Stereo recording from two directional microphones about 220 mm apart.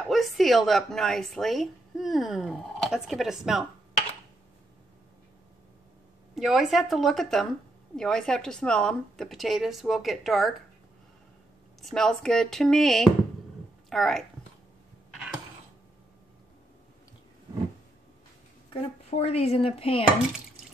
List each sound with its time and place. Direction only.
0.1 s speech: centre (ahead or behind)
6.3 s speech: centre (ahead or behind)
11.8 s speech: centre (ahead or behind)
18.7 s speech: 25° left (ahead or behind)